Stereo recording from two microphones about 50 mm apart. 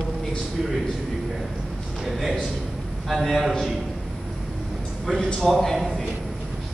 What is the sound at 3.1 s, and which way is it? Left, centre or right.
Speech, centre.